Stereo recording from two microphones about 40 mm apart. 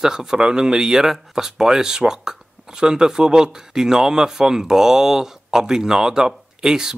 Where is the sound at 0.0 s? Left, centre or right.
Centre.